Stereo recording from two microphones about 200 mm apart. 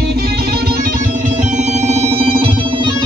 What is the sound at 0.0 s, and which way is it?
Music, 50° right (ahead or behind).